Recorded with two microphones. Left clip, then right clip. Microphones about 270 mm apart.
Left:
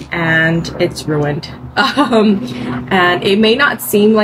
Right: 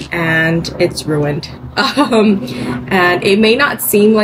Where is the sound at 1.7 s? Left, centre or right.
Centre.